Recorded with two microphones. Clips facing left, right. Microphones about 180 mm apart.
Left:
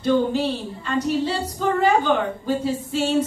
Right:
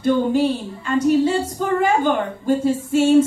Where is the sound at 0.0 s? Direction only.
50° right (ahead or behind).